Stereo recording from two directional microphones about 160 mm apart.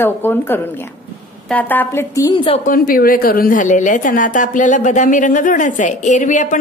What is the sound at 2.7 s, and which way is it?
A woman's voice, 60° left (ahead or behind).